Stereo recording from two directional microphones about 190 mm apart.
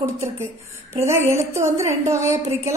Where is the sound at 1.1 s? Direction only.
15° right (ahead or behind).